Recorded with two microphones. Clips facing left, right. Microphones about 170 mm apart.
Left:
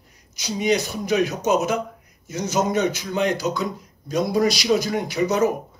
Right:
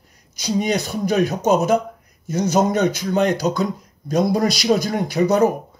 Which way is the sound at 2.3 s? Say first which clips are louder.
Right 4 dB; 55° right (ahead or behind).